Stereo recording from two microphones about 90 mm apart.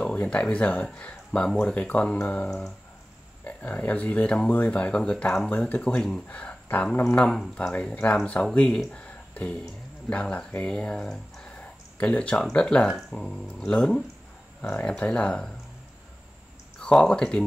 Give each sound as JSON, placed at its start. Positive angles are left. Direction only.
{"t": 0.0, "sound": "speech", "side_deg": 15}
{"t": 16.8, "sound": "speech", "side_deg": 10}